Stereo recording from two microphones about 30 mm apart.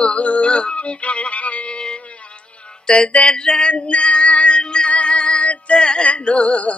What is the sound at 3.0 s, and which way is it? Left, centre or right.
Music, left.